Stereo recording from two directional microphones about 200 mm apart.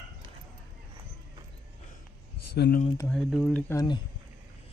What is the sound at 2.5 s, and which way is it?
Speech, 55° left (ahead or behind).